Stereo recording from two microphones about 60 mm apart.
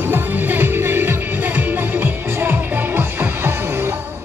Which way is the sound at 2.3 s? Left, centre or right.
Right.